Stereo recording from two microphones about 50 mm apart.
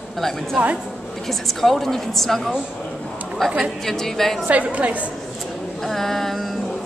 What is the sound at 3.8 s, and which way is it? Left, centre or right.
Speech, centre.